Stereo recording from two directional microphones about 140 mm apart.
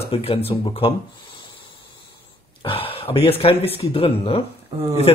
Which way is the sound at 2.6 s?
40° left (ahead or behind).